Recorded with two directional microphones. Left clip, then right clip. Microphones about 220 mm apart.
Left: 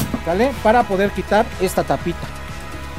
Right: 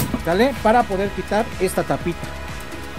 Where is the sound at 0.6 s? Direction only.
Centre (ahead or behind).